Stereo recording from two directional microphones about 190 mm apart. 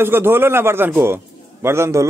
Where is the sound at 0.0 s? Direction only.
10° right (ahead or behind).